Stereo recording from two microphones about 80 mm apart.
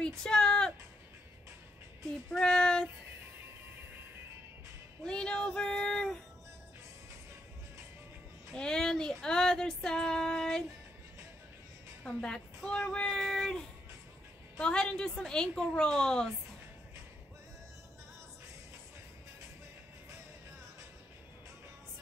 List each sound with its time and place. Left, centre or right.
0.2 s music: centre
2.3 s child singing: centre
5.0 s child singing: centre
8.5 s female singing: centre
12.0 s a woman's voice: centre
12.5 s child singing: centre
14.6 s a woman's voice: centre